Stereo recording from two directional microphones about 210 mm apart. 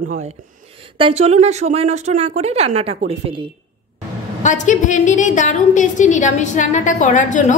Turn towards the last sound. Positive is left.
turn(degrees=35)  # may be behind; listen again after turning